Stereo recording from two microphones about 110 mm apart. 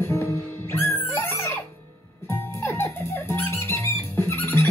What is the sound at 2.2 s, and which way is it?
Music, 25° left (ahead or behind).